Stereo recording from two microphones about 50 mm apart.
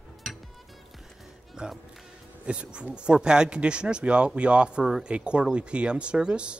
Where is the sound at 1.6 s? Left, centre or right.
Centre.